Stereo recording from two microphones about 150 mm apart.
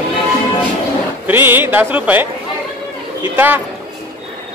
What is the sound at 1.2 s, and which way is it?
Speech, 15° right (ahead or behind).